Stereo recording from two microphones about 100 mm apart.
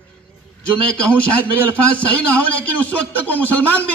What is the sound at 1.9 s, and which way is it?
A man's voice, 15° left (ahead or behind).